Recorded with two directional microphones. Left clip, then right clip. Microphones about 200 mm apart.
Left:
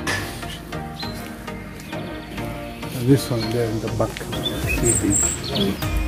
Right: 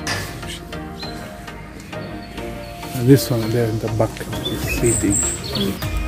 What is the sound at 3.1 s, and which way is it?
Speech, 45° right (ahead or behind).